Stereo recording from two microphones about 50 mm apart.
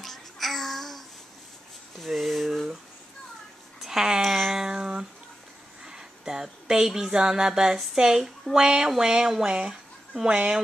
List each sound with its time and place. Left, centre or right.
0.0 s child singing: centre
2.0 s speech: centre
3.8 s speech: centre
4.2 s music: centre
4.6 s a sound: centre
10.2 s speech: centre